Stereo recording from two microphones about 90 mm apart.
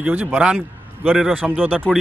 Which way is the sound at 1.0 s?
5° left (ahead or behind).